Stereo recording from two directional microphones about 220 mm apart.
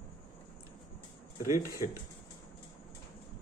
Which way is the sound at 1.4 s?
35° left (ahead or behind).